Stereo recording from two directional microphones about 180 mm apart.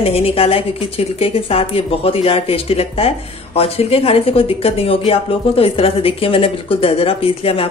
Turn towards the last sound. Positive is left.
turn(degrees=30)  # may be behind; listen again after turning